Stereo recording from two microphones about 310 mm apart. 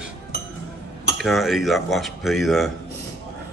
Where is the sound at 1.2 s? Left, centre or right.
Centre.